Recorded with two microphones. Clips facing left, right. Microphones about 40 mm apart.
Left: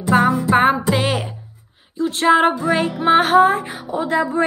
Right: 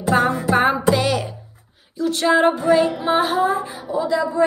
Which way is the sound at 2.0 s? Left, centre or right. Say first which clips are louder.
Left 2 dB; left.